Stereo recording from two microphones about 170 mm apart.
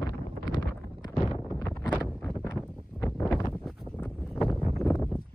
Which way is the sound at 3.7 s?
10° left (ahead or behind).